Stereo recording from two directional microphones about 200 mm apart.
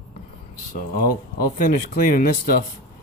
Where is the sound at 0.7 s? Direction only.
45° left (ahead or behind).